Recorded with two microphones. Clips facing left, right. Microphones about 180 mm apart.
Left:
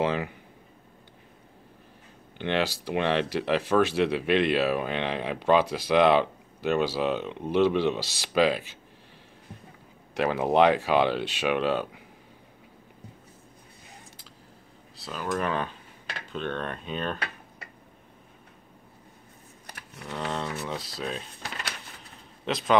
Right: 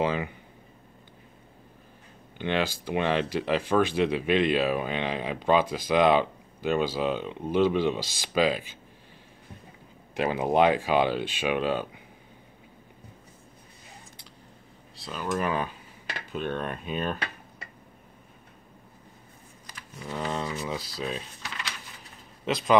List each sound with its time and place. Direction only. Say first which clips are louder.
0.0 s speech: even; centre (ahead or behind)
2.4 s speech: left 1 dB; centre (ahead or behind)
10.4 s speech: left 1 dB; centre (ahead or behind)
15.0 s a sound: even; centre (ahead or behind)
15.3 s speech: right 1 dB; 5° right (ahead or behind)
19.6 s a sound: right 1 dB; 65° left (ahead or behind)
20.1 s speech: right 1 dB; 5° right (ahead or behind)
21.4 s drawer open or close: left 1 dB; 40° left (ahead or behind)
22.4 s a man's voice: right 1 dB; centre (ahead or behind)